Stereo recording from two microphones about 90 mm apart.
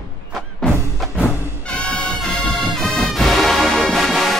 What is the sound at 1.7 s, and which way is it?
Music, 10° left (ahead or behind).